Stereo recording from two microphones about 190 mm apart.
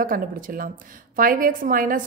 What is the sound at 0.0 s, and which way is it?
A woman's voice, 45° right (ahead or behind).